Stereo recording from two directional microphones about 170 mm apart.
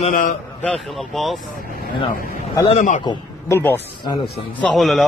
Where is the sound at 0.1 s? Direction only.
50° left (ahead or behind).